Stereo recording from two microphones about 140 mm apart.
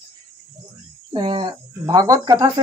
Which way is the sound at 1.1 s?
40° right (ahead or behind).